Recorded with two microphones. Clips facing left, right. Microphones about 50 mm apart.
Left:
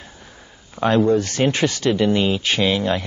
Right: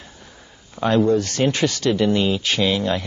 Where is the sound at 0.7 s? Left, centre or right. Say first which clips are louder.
Left 1 dB; left.